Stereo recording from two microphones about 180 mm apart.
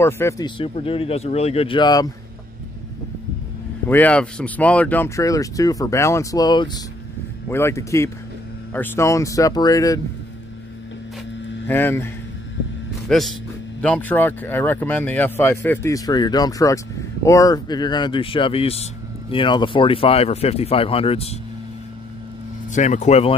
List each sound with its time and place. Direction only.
0.0 s speech: 15° left (ahead or behind)
0.6 s speech: 30° left (ahead or behind)
3.9 s speech: 5° left (ahead or behind); by 6.8 s 25° left (ahead or behind)
7.4 s speech: 15° left (ahead or behind)
11.6 s speech: 10° left (ahead or behind)
13.1 s speech: centre (ahead or behind); by 21.4 s 35° left (ahead or behind)
22.7 s speech: 40° left (ahead or behind)